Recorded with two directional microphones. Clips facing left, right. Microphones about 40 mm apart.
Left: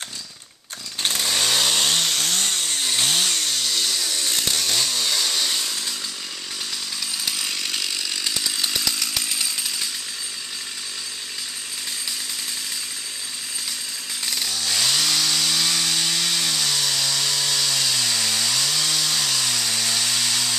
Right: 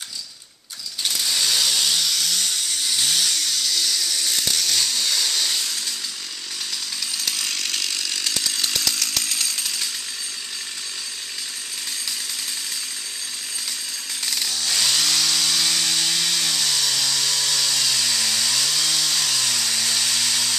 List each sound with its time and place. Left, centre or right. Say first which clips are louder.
1.0 s chainsaw: left 1 dB; left; by 5.9 s centre
7.2 s chainsaw: right 1 dB; centre
14.2 s chainsaw: even; centre